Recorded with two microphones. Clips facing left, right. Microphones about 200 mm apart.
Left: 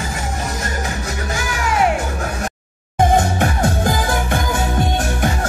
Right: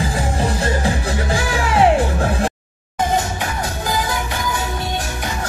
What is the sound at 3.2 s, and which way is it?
Music, 50° left (ahead or behind).